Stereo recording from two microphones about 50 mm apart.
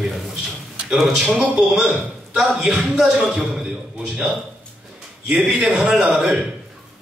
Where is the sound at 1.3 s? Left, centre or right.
Right.